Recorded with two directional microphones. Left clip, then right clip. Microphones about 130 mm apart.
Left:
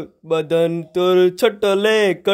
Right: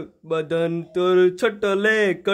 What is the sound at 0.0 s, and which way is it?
Mantra, 40° left (ahead or behind).